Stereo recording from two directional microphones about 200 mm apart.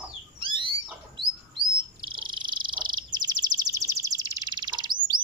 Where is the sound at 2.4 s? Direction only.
25° right (ahead or behind).